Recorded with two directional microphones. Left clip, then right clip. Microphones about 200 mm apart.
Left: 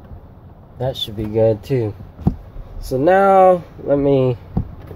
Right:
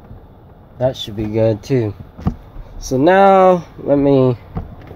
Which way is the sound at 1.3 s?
35° right (ahead or behind).